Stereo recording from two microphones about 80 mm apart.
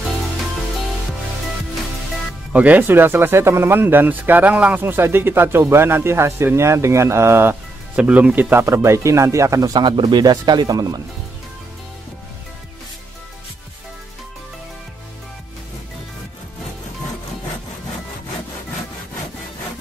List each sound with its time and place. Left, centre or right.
2.5 s speech: centre
7.9 s speech: centre; by 9.7 s right
9.7 s speech: right